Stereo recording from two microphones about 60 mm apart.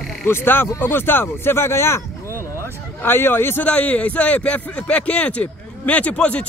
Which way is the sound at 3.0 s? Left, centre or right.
Left.